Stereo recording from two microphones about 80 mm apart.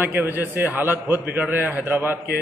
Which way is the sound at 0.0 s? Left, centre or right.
Right.